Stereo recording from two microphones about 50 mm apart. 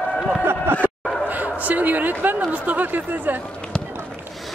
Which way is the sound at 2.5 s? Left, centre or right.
Right.